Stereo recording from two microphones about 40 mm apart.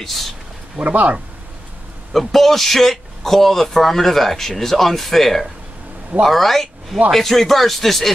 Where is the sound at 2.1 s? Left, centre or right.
Centre.